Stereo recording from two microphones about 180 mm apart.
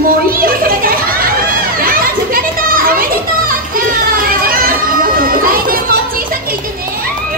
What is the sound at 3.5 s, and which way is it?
Music, 50° right (ahead or behind).